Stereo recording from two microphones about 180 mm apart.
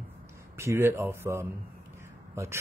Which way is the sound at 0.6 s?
15° right (ahead or behind).